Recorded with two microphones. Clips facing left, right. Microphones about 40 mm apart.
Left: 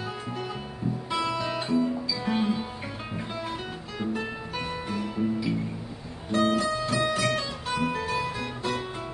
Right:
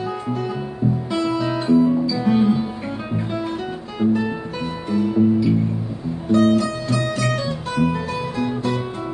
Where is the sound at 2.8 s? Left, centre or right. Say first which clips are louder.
Right 9 dB; centre.